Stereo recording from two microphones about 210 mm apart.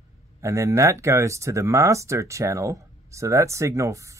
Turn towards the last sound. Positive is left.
turn(degrees=-15)  # may be behind; listen again after turning